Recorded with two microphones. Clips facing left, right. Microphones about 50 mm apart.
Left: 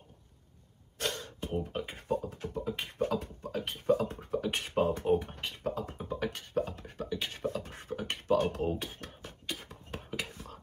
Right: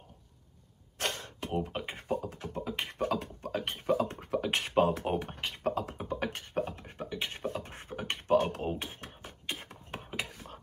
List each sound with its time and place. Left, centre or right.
0.9 s throat clearing: right
1.4 s beatboxing: right
2.2 s beatboxing: right
5.0 s a sound: right
5.9 s beatboxing: right
6.1 s beatboxing: right
10.3 s a sound: right